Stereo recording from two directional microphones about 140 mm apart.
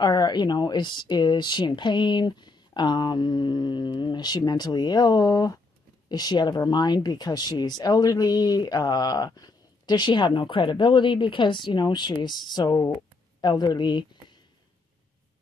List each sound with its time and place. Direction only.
0.0 s speech: 30° left (ahead or behind)